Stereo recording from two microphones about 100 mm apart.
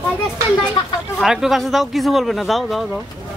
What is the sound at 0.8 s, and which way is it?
Speech, 50° left (ahead or behind).